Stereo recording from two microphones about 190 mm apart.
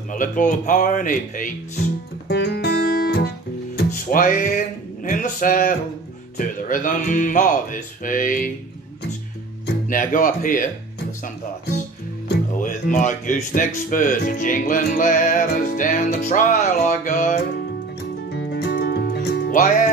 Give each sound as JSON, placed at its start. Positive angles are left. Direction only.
{"t": 0.1, "sound": "speech", "side_deg": 45}
{"t": 2.2, "sound": "music", "side_deg": 60}
{"t": 6.3, "sound": "speech", "side_deg": 45}
{"t": 9.8, "sound": "speech", "side_deg": 45}
{"t": 12.3, "sound": "speech", "side_deg": 45}
{"t": 18.3, "sound": "music", "side_deg": 60}